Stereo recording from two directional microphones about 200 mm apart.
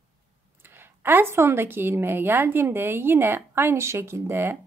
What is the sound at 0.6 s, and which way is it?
A woman's voice, 10° right (ahead or behind).